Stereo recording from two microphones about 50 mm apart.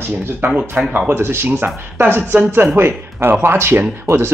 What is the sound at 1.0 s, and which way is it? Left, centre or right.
Speech, right.